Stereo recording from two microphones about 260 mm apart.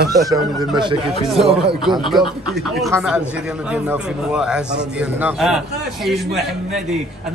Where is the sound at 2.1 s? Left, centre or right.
Centre.